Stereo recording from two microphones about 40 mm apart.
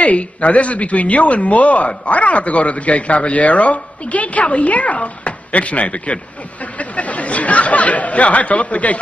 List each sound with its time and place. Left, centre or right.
0.0 s speech: left